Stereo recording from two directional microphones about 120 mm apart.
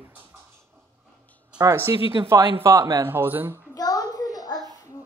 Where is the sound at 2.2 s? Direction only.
20° right (ahead or behind).